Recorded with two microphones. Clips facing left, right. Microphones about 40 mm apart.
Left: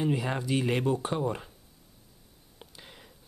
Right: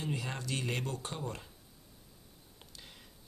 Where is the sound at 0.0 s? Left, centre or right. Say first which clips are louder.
Left 9 dB; centre.